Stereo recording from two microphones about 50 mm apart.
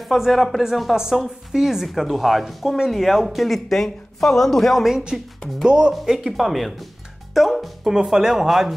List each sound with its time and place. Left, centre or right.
0.0 s a woman's voice: centre
4.8 s a woman's voice: centre